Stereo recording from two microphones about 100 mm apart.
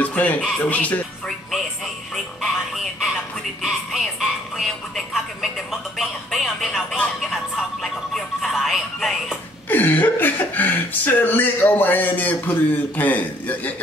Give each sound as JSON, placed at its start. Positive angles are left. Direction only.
{"t": 0.0, "sound": "music", "side_deg": 15}
{"t": 0.6, "sound": "speech", "side_deg": 15}
{"t": 2.1, "sound": "music", "side_deg": 0}
{"t": 7.0, "sound": "speech", "side_deg": 0}
{"t": 9.7, "sound": "speech", "side_deg": 20}